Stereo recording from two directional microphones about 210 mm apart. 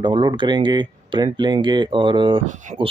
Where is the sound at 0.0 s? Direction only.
20° right (ahead or behind).